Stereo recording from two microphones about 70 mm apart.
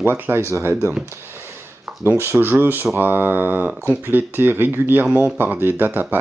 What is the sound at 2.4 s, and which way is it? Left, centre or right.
Speech, right.